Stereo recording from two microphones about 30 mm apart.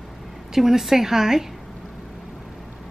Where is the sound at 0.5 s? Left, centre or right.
Centre.